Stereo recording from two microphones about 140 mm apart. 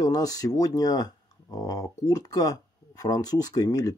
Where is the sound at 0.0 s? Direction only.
25° left (ahead or behind).